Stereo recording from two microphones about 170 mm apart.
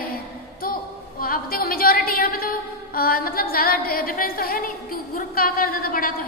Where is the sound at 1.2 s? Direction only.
60° left (ahead or behind).